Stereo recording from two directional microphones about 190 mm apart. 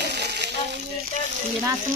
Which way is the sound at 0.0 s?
60° right (ahead or behind).